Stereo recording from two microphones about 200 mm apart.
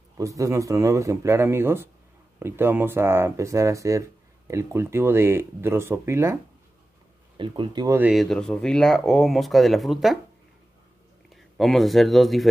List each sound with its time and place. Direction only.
0.2 s speech: 15° right (ahead or behind)
7.3 s speech: 25° right (ahead or behind)
8.1 s speech: centre (ahead or behind)
11.2 s speech: centre (ahead or behind)